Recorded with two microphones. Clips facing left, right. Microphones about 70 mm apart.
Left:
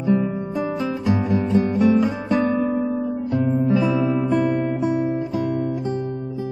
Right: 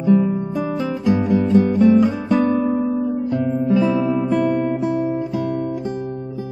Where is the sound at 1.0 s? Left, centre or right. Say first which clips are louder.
Right 5 dB; centre.